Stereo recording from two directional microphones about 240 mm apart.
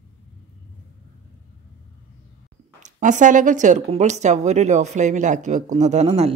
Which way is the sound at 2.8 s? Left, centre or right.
Right.